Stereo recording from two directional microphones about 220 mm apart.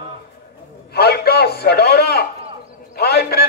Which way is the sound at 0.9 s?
45° left (ahead or behind).